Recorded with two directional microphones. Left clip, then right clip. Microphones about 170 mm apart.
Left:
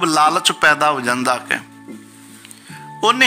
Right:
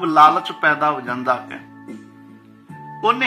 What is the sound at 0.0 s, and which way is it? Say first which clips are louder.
A man's voice: right 2 dB; 40° left (ahead or behind).